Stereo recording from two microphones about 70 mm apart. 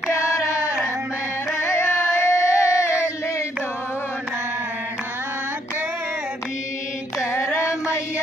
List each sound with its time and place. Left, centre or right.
0.1 s a sound: left
1.6 s singing: left
7.5 s music: left